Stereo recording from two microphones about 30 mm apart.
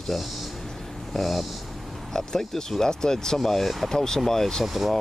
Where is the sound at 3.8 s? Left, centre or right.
Centre.